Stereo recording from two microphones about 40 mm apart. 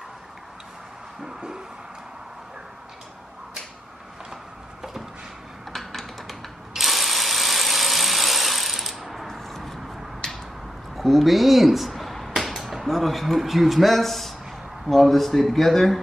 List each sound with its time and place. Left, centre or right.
1.2 s music: centre
5.7 s typing: centre
6.7 s ratchet: centre
10.2 s a sound: centre
11.0 s speech: centre